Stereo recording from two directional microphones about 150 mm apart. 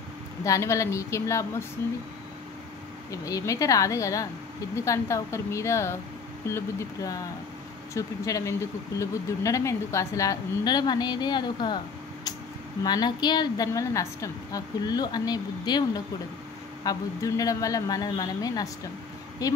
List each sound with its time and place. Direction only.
0.4 s speech: 20° left (ahead or behind)
3.1 s speech: 20° left (ahead or behind)
12.8 s speech: 25° left (ahead or behind)